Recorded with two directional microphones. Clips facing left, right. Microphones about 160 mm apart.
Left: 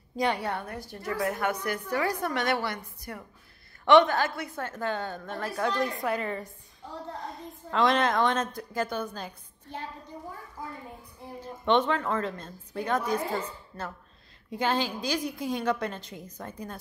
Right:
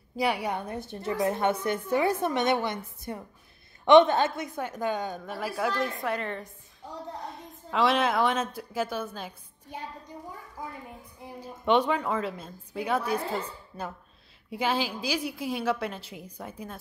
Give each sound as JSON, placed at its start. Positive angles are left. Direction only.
{"t": 0.2, "sound": "a woman's voice", "side_deg": -10}
{"t": 11.4, "sound": "a woman's voice", "side_deg": -10}